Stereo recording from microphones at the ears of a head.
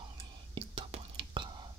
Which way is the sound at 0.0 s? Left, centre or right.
Right.